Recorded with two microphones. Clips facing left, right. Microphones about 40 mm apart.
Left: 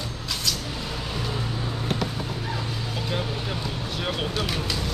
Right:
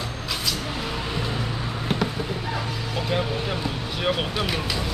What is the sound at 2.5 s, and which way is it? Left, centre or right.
Speech, centre.